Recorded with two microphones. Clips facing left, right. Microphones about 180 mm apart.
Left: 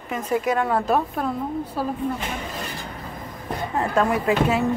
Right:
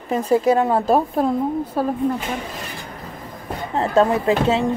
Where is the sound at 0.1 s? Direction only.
30° right (ahead or behind).